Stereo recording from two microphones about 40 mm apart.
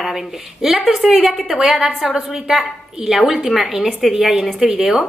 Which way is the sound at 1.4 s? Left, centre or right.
Centre.